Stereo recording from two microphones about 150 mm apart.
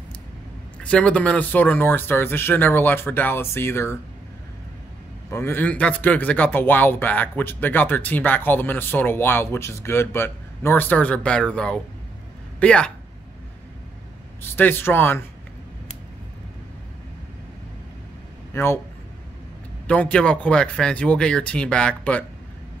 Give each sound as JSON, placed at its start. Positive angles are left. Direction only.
{"t": 0.7, "sound": "speech", "side_deg": 5}
{"t": 5.3, "sound": "speech", "side_deg": 15}
{"t": 14.5, "sound": "speech", "side_deg": 15}
{"t": 18.5, "sound": "speech", "side_deg": 15}
{"t": 19.9, "sound": "speech", "side_deg": 10}